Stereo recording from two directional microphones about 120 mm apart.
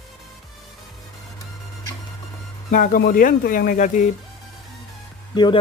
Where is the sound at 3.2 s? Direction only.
90° left.